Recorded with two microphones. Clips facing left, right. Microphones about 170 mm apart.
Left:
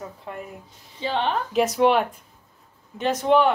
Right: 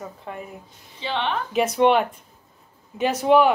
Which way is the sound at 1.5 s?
Centre (ahead or behind).